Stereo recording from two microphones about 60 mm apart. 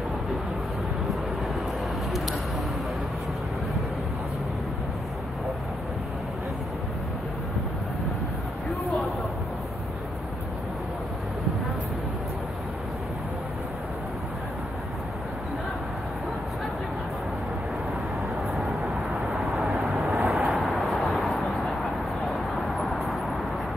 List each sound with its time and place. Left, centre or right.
18.5 s vehicle: centre